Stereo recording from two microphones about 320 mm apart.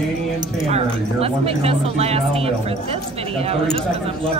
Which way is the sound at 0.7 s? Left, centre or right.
Centre.